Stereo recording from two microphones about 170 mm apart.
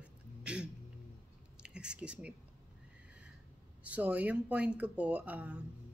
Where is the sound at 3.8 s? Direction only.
10° right (ahead or behind).